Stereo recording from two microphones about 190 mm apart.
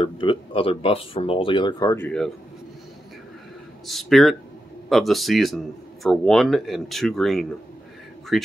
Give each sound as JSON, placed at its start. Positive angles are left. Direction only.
{"t": 0.0, "sound": "speech", "side_deg": 25}
{"t": 3.8, "sound": "speech", "side_deg": 0}